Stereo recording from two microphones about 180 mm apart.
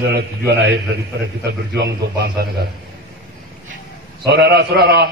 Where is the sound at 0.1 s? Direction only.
65° right (ahead or behind).